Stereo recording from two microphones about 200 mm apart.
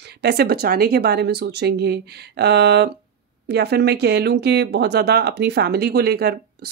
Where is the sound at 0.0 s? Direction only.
55° right (ahead or behind).